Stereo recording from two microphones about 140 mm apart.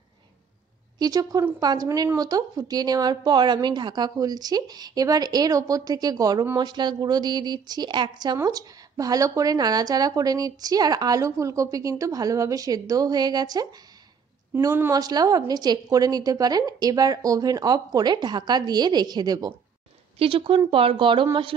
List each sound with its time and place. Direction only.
0.9 s a woman's voice: 30° right (ahead or behind)
14.5 s a woman's voice: 15° right (ahead or behind)
20.2 s a woman's voice: 40° right (ahead or behind)